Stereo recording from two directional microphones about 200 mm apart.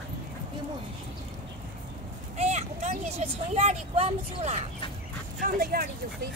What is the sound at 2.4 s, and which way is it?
Speech, 35° right (ahead or behind).